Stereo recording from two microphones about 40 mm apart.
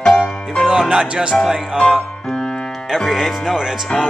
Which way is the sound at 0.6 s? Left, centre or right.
Right.